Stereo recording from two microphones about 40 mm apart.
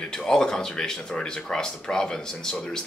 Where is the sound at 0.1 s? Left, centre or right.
Centre.